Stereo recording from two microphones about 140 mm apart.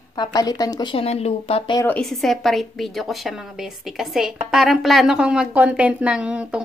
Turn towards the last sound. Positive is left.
turn(degrees=-10)  # may be behind; listen again after turning